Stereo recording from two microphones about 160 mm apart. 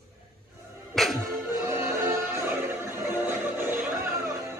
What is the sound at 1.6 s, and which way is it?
Music, 15° right (ahead or behind).